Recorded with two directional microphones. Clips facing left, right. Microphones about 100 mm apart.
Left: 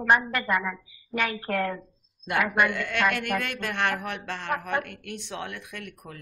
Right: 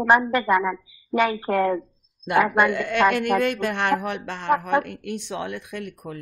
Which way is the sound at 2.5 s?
25° right (ahead or behind).